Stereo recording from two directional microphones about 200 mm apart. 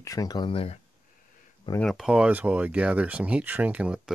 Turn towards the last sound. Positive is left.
turn(degrees=-5)  # may be behind; listen again after turning